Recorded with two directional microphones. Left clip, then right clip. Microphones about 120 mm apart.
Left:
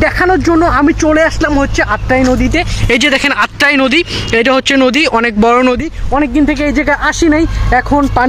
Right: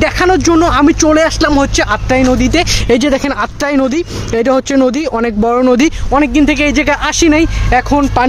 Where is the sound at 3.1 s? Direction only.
10° right (ahead or behind).